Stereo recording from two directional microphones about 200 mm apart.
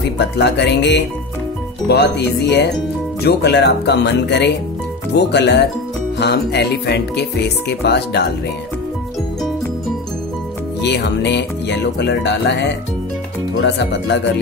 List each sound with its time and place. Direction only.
0.0 s speech: 60° left (ahead or behind)
10.8 s speech: 60° left (ahead or behind)